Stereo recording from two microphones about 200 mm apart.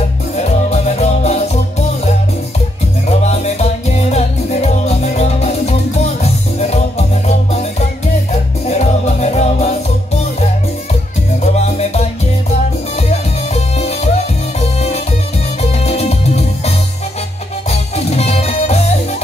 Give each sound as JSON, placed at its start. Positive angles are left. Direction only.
{"t": 0.4, "sound": "music", "side_deg": 35}
{"t": 3.1, "sound": "music", "side_deg": 35}
{"t": 8.6, "sound": "music", "side_deg": 35}